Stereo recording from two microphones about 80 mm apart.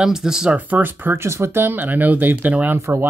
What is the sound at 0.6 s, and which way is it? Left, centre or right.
Speech, right.